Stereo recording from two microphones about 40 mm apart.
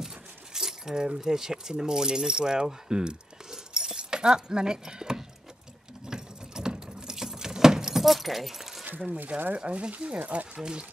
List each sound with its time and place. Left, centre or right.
0.0 s speech: centre
6.0 s keys jangling: centre
8.0 s speech: centre
9.5 s speech: right